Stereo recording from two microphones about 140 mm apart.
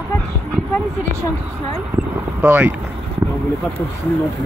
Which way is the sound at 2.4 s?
15° right (ahead or behind).